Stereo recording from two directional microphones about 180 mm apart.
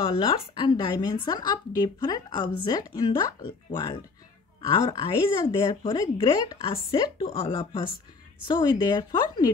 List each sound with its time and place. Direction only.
0.0 s a woman's voice: 25° left (ahead or behind)